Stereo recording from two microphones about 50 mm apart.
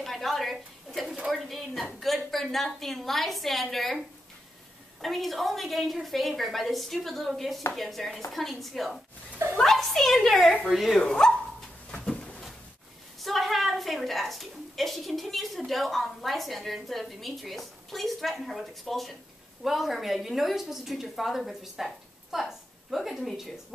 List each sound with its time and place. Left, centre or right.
0.0 s a sound: centre
1.2 s a woman's voice: centre
5.0 s a woman's voice: centre
11.0 s speech: centre
12.1 s a sound: left
13.2 s a woman's voice: centre